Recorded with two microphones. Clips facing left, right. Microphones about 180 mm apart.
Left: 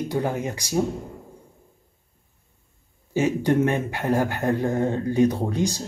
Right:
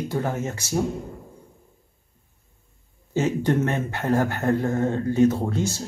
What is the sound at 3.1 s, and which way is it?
Speech, 10° left (ahead or behind).